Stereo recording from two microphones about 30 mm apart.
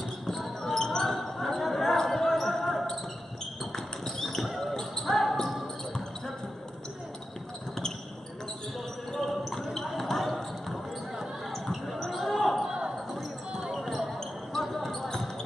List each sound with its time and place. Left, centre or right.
0.7 s basketball bounce: centre
1.4 s basketball bounce: centre
3.7 s a sound: centre
4.4 s basketball bounce: centre
9.1 s basketball bounce: centre
13.5 s basketball bounce: right
13.7 s basketball bounce: centre